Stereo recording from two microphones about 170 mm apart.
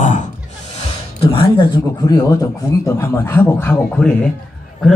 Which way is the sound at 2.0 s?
20° left (ahead or behind).